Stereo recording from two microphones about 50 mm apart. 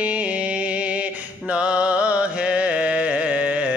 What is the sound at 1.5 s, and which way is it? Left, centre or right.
Music, right.